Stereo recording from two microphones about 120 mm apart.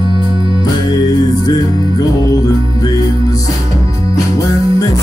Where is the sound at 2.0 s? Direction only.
30° left (ahead or behind).